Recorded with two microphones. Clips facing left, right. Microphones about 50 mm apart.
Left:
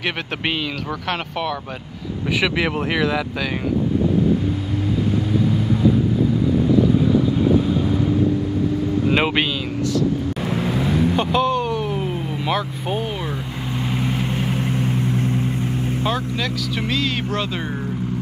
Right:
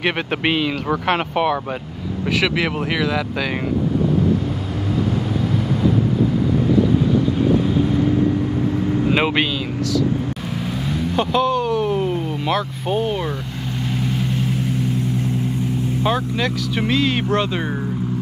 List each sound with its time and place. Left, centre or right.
0.0 s speech: centre
2.4 s speech: centre
9.1 s a man's voice: centre
11.1 s speech: centre
11.7 s vehicle: centre
13.9 s vehicle: centre
16.0 s speech: centre